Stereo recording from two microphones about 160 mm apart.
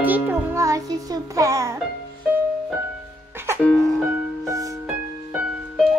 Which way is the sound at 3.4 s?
15° right (ahead or behind).